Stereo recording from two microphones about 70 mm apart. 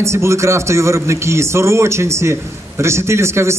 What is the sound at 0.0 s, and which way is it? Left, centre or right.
A man's voice, right.